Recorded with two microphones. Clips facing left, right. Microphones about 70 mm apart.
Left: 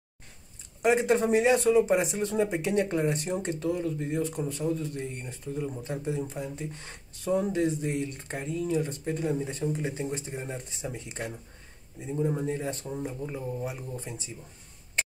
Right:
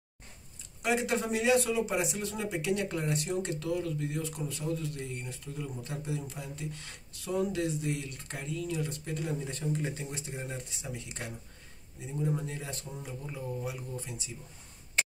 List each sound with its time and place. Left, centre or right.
0.8 s speech: left